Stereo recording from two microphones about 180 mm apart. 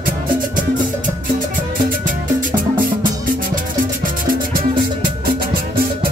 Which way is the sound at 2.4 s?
50° right (ahead or behind).